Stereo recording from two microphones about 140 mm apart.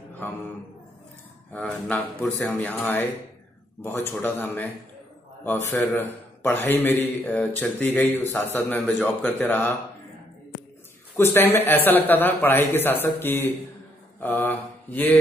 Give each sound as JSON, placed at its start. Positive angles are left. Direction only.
{"t": 0.1, "sound": "speech", "side_deg": 10}
{"t": 1.5, "sound": "a man's voice", "side_deg": 5}
{"t": 8.8, "sound": "speech", "side_deg": 5}
{"t": 9.4, "sound": "a man's voice", "side_deg": 15}
{"t": 11.3, "sound": "a man's voice", "side_deg": 15}